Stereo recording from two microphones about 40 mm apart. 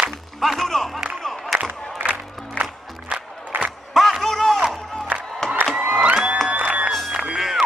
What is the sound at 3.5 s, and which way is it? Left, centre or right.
Crowd, right.